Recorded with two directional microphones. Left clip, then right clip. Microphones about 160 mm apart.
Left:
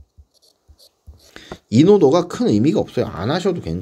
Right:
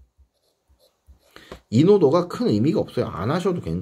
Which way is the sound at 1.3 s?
45° left (ahead or behind).